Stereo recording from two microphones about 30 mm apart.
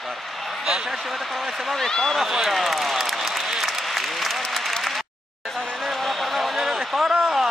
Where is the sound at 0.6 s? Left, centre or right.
Centre.